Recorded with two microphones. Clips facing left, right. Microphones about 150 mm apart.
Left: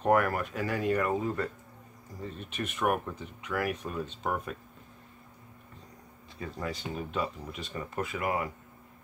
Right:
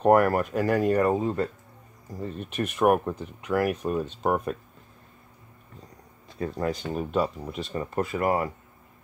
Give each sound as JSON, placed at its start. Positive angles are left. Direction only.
{"t": 0.0, "sound": "speech", "side_deg": -40}
{"t": 2.5, "sound": "speech", "side_deg": -45}
{"t": 6.4, "sound": "speech", "side_deg": -45}